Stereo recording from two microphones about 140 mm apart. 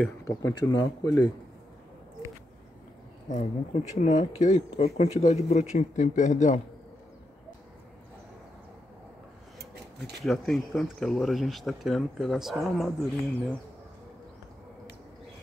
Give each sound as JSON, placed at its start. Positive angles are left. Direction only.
{"t": 0.2, "sound": "speech", "side_deg": 25}
{"t": 3.3, "sound": "speech", "side_deg": 60}
{"t": 10.2, "sound": "speech", "side_deg": 0}